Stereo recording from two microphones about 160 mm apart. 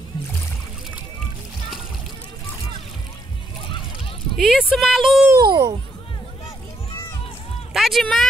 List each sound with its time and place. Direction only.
4.4 s speech: centre (ahead or behind)
5.3 s a child's voice: 25° right (ahead or behind)
7.7 s speech: centre (ahead or behind)